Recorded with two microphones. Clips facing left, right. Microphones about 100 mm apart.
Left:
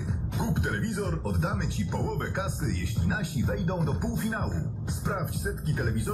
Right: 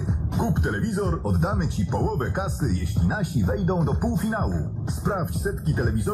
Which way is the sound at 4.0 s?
35° right (ahead or behind).